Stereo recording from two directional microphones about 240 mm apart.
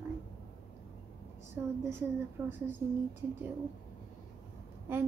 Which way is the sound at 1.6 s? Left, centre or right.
Centre.